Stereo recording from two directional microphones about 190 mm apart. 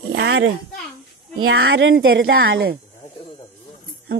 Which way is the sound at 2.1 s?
80° right.